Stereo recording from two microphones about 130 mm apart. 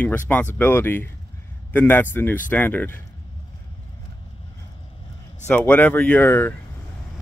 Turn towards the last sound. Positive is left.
turn(degrees=15)  # may be behind; listen again after turning